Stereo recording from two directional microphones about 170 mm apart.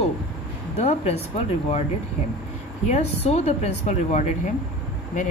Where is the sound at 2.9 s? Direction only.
40° left (ahead or behind).